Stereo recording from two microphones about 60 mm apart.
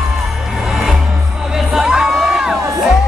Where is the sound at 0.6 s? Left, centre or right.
Centre.